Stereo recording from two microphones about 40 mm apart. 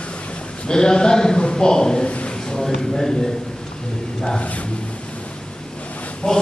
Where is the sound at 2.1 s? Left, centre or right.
Left.